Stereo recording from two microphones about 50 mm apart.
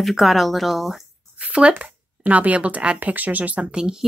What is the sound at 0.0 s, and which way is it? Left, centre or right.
Speech, centre.